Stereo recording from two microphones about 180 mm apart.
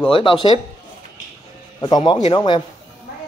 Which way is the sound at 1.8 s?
25° left (ahead or behind).